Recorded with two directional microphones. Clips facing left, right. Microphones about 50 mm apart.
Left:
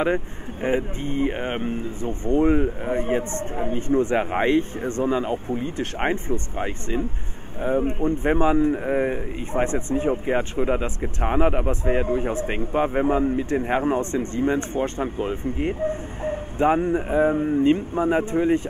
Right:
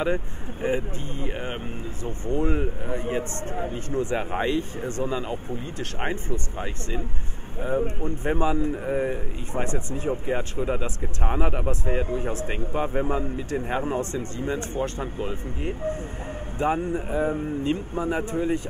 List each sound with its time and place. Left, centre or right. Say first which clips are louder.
0.0 s speech: left 3 dB; left